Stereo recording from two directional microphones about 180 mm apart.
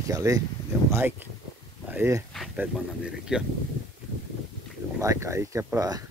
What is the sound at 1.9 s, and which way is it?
Speech, 15° right (ahead or behind).